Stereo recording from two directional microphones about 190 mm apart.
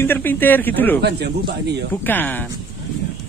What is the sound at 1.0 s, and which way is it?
Speech, 60° right (ahead or behind).